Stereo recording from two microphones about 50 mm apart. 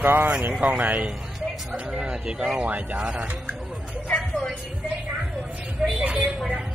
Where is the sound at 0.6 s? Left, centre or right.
Right.